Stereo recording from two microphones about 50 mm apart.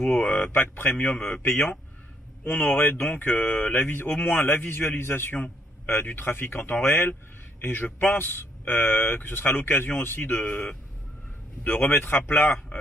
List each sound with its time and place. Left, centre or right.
0.0 s a man's voice: left